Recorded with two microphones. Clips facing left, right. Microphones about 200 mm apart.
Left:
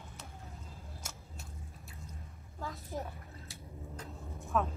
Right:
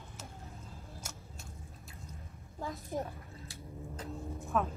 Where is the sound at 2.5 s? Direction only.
15° right (ahead or behind).